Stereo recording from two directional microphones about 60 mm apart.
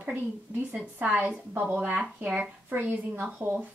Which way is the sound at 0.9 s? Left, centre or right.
Right.